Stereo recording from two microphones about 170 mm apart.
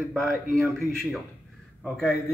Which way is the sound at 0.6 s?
Centre (ahead or behind).